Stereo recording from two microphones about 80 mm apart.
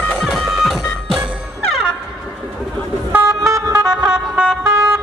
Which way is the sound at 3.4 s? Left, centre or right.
Right.